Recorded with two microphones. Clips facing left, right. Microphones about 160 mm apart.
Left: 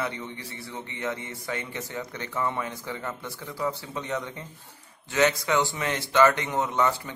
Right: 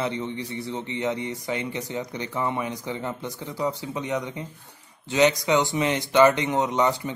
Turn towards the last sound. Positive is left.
turn(degrees=-20)  # may be behind; listen again after turning